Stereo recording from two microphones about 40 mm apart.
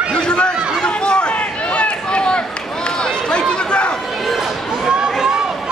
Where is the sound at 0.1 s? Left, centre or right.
Left.